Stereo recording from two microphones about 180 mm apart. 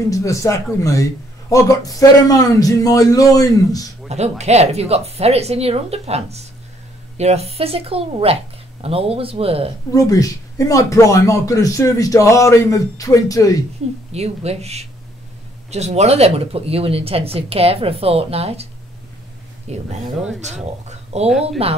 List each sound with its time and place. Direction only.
0.1 s a man's voice: 15° left (ahead or behind)
4.1 s speech: 35° right (ahead or behind)
9.9 s speech: 20° left (ahead or behind)
14.1 s speech: 35° right (ahead or behind)
21.3 s speech: centre (ahead or behind)